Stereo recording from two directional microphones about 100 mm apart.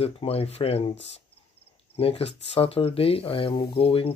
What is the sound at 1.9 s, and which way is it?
Speech, 75° left (ahead or behind).